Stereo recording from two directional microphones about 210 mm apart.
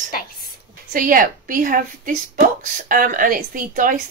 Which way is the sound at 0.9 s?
40° right (ahead or behind).